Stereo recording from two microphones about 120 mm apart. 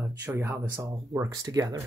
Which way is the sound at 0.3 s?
20° right (ahead or behind).